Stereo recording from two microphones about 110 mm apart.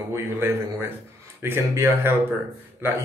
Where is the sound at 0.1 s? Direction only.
20° right (ahead or behind).